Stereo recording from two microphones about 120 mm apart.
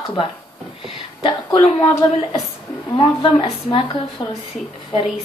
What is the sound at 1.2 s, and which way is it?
Speech, 40° left (ahead or behind).